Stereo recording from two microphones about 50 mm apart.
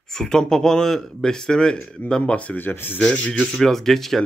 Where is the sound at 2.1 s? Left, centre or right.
Left.